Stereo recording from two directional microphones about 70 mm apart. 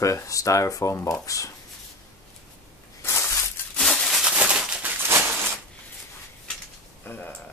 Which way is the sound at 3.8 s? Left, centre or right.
Centre.